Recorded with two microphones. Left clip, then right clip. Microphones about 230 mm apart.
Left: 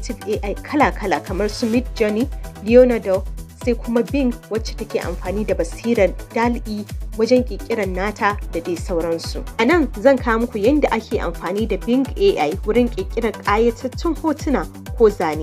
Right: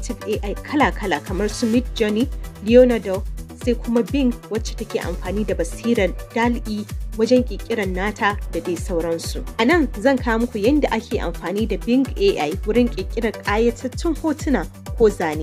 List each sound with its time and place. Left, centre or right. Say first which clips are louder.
0.4 s speech: left 2 dB; right